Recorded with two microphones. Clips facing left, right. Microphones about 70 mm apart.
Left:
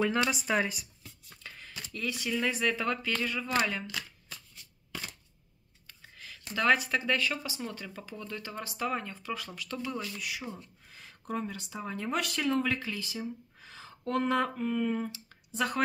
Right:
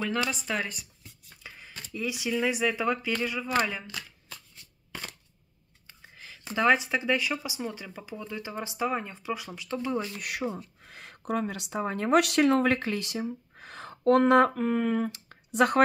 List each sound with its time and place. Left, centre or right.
0.3 s speech: centre
1.4 s speech: centre
5.9 s speech: centre
10.1 s speech: right
10.8 s a sound: right
11.8 s speech: right